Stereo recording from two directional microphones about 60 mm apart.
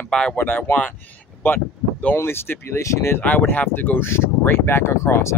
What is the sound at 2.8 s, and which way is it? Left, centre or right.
Speech, left.